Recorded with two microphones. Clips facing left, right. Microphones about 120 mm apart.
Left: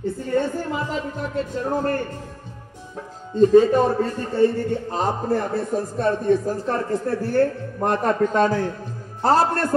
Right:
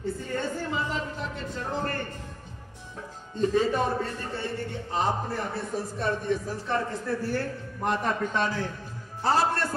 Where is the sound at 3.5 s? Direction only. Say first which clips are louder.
Left 8 dB; 40° left (ahead or behind).